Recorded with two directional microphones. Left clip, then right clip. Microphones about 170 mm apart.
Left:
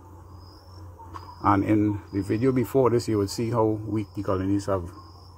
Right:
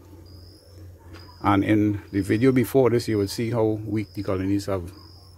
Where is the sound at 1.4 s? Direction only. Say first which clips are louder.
Right 1 dB; 20° right (ahead or behind).